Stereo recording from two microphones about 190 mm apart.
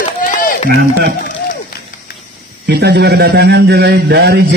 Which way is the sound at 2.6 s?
60° right (ahead or behind).